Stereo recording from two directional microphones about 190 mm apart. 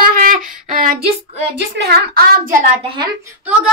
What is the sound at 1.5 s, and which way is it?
A child's voice, 60° right (ahead or behind).